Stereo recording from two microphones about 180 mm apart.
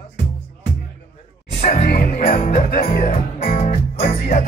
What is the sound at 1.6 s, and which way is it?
Music, 50° left (ahead or behind).